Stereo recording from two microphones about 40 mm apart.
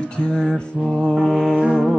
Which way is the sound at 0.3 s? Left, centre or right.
Centre.